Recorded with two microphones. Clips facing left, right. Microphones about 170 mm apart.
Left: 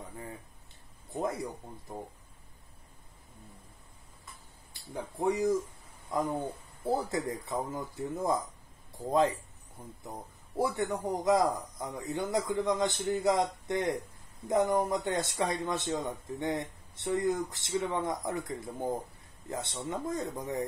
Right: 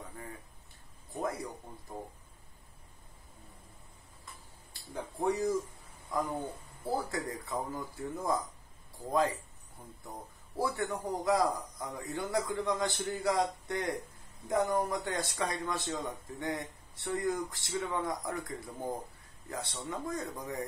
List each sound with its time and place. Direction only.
1.1 s speech: 20° left (ahead or behind)
5.2 s speech: 20° left (ahead or behind)
6.8 s speech: 20° left (ahead or behind)
10.6 s speech: 20° left (ahead or behind)